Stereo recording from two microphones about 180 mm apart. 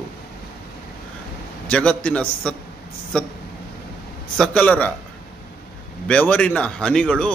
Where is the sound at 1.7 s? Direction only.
5° left (ahead or behind).